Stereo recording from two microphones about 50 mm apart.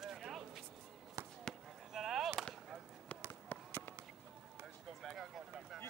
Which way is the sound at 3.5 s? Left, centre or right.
Left.